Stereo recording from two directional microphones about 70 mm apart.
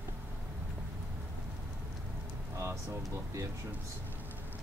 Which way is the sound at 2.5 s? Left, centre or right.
Right.